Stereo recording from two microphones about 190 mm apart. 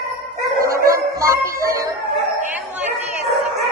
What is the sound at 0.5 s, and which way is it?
Dog, 50° right (ahead or behind).